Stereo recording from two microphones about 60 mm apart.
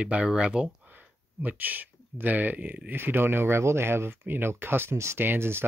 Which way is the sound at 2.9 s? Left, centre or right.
Right.